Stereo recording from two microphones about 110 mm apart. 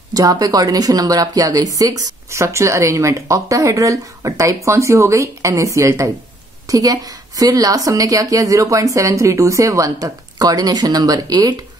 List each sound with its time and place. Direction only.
0.1 s a woman's voice: 35° right (ahead or behind)